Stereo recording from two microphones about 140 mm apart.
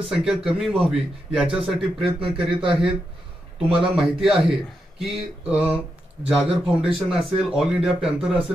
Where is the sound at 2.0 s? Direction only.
40° right (ahead or behind).